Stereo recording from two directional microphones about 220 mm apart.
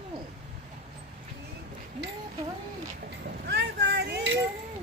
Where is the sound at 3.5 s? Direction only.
50° right (ahead or behind).